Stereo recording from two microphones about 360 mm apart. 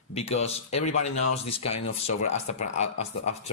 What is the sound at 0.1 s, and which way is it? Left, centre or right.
Speech, centre.